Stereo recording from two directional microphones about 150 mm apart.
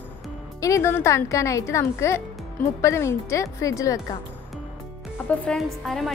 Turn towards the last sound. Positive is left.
turn(degrees=0)  # may be behind; listen again after turning